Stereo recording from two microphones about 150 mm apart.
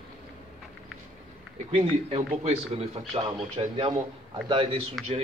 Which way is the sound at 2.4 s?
40° right (ahead or behind).